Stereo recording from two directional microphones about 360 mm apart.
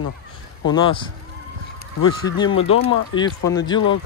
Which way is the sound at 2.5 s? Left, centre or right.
Left.